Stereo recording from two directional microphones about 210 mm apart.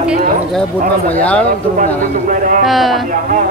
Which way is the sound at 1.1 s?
5° left (ahead or behind).